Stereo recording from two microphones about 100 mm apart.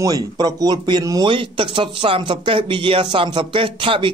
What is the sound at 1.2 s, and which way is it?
Speech, 60° right (ahead or behind).